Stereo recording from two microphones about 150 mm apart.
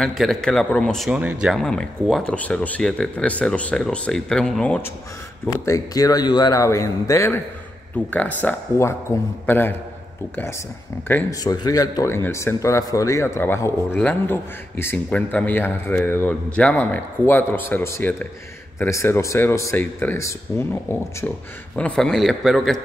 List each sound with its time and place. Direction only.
0.0 s speech: centre (ahead or behind)
5.5 s a man's voice: 25° left (ahead or behind)
11.2 s a man's voice: 25° left (ahead or behind); by 22.8 s centre (ahead or behind)